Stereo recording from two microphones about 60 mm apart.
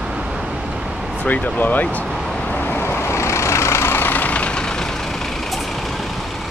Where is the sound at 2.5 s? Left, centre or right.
Left; by 6.3 s centre.